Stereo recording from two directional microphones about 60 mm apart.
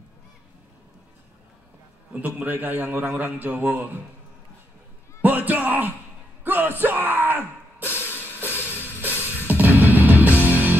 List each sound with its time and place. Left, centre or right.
2.1 s a man's voice: right
5.2 s a man's voice: right
6.4 s music: right